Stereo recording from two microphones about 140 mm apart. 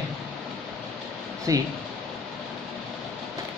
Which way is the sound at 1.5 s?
25° right (ahead or behind).